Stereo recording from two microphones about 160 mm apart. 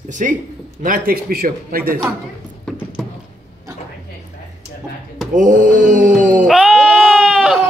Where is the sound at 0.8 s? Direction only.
65° right (ahead or behind).